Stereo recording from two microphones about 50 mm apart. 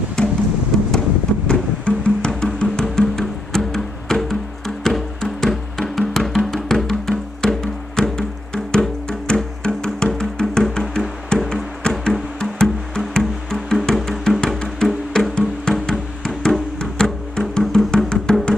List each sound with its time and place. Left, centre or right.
0.2 s music: centre
1.5 s music: left
11.3 s music: centre